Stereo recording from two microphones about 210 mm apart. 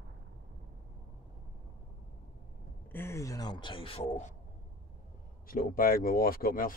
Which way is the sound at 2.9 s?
10° left (ahead or behind).